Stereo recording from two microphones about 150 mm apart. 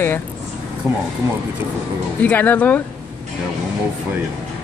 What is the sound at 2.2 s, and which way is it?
Speech, 10° left (ahead or behind).